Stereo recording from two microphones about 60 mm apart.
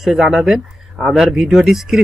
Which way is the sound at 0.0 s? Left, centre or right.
Centre.